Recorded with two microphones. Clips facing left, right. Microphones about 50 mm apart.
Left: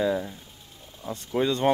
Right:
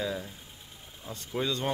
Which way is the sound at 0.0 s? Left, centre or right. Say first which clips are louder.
Left 8 dB; centre.